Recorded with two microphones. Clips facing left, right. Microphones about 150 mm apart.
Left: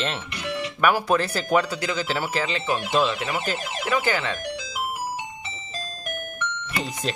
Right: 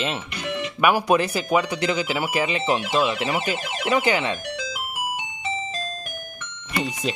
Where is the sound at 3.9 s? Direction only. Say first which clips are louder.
Right 3 dB; 20° right (ahead or behind).